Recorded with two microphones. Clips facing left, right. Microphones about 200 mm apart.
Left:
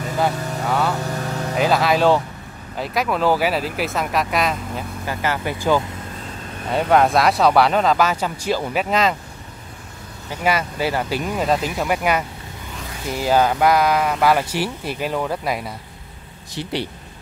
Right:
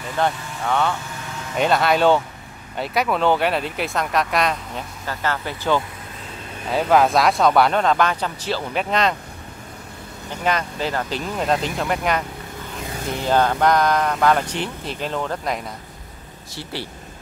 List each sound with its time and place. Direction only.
0.7 s speech: 5° left (ahead or behind)
0.9 s vehicle: 40° left (ahead or behind)
1.6 s speech: centre (ahead or behind)
5.0 s speech: 15° left (ahead or behind)
6.7 s speech: centre (ahead or behind)
10.4 s speech: 10° left (ahead or behind)